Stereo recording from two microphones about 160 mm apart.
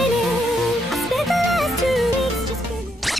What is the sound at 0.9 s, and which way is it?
Music, centre (ahead or behind).